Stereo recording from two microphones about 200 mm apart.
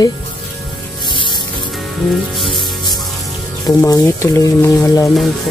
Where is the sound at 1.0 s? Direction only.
25° left (ahead or behind).